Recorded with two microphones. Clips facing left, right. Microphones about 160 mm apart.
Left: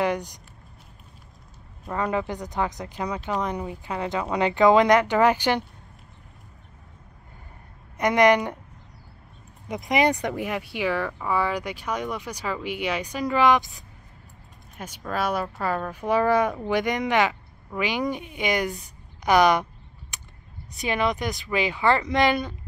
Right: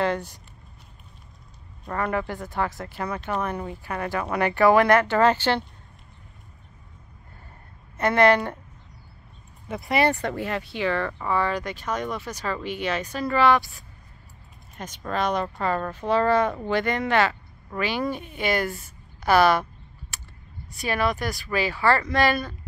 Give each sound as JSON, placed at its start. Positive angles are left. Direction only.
{"t": 0.0, "sound": "speech", "side_deg": 15}
{"t": 1.9, "sound": "speech", "side_deg": 15}
{"t": 8.0, "sound": "speech", "side_deg": 15}
{"t": 9.7, "sound": "speech", "side_deg": 15}
{"t": 14.8, "sound": "speech", "side_deg": 5}